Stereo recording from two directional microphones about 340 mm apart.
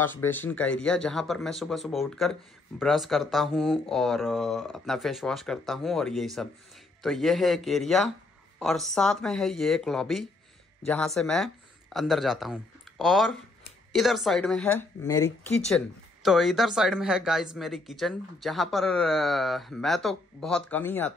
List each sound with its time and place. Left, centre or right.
0.0 s speech: centre